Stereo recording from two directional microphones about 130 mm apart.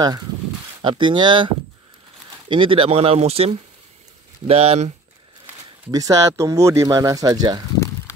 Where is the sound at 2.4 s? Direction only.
40° right (ahead or behind).